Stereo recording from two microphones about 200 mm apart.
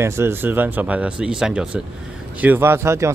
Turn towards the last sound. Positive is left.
turn(degrees=-15)  # may be behind; listen again after turning